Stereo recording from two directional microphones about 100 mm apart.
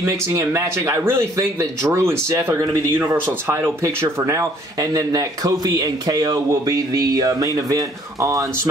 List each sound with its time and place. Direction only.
0.0 s speech: 35° right (ahead or behind)